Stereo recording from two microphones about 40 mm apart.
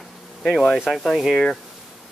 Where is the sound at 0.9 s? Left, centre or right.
Centre.